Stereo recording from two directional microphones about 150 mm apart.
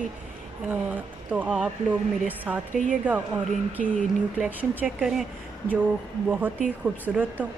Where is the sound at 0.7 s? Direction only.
10° right (ahead or behind).